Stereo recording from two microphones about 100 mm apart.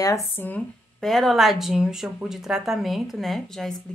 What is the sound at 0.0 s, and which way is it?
Speech, 30° left (ahead or behind).